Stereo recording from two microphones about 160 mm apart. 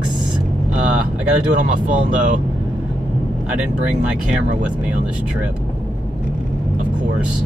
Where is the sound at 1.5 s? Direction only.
50° right (ahead or behind).